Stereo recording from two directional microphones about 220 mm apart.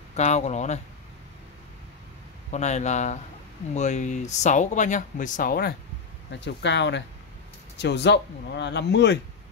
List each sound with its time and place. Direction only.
0.1 s speech: 30° left (ahead or behind)
2.5 s speech: 30° left (ahead or behind); by 9.2 s 50° left (ahead or behind)